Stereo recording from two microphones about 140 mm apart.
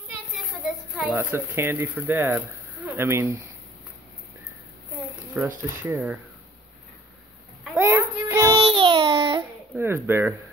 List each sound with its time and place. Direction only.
0.3 s a sound: centre (ahead or behind)
1.1 s speech: 15° right (ahead or behind)
5.4 s speech: 10° right (ahead or behind)
7.7 s a sound: 20° right (ahead or behind)
8.5 s babbling: 40° right (ahead or behind)
9.8 s speech: 15° right (ahead or behind)